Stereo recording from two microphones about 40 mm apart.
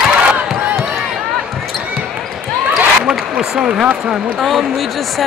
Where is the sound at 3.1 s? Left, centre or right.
Centre.